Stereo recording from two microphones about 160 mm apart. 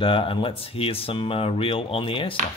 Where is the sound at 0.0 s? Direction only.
35° left (ahead or behind).